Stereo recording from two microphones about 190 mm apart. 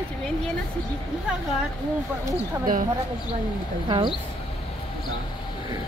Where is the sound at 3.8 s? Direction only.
25° right (ahead or behind).